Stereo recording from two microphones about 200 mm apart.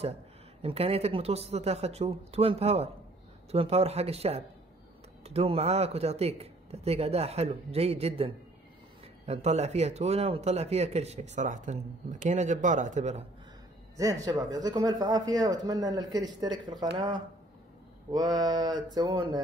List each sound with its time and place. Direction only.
0.6 s speech: 30° right (ahead or behind)
13.9 s speech: 15° right (ahead or behind)